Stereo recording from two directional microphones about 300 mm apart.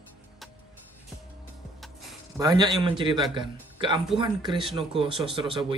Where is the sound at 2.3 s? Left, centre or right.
Centre.